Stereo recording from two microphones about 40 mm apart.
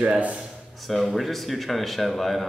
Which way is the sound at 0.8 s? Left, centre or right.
Centre.